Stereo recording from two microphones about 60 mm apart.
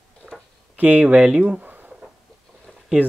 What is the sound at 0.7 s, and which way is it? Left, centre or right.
Speech, right.